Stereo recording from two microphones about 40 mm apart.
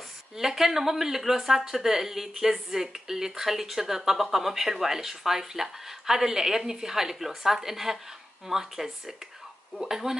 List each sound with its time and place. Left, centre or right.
0.4 s speech: centre